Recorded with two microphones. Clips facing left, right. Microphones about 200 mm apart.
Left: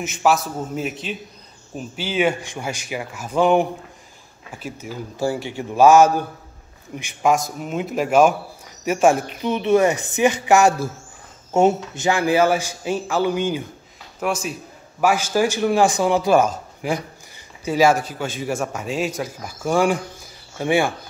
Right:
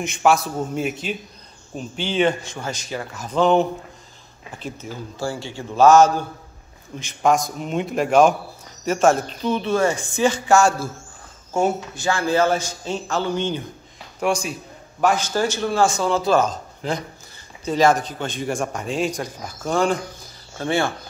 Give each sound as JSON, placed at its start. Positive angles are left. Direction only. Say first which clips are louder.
{"t": 0.0, "sound": "a man's voice", "louder": "right 1 dB", "side_deg": 5}